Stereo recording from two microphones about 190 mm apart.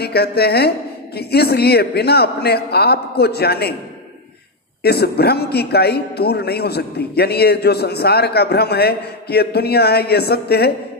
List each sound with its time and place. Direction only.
0.0 s a man's voice: 55° left (ahead or behind)
4.8 s a man's voice: 55° left (ahead or behind)